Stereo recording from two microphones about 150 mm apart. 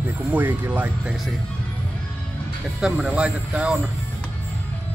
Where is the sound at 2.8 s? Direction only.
5° right (ahead or behind).